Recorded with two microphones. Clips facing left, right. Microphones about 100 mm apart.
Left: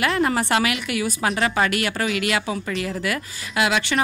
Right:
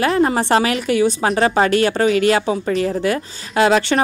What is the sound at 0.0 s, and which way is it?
A woman's voice, 30° right (ahead or behind).